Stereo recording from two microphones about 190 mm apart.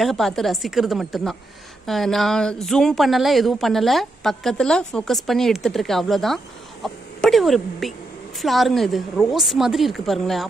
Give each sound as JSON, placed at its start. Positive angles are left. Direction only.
{"t": 0.0, "sound": "a woman's voice", "side_deg": 0}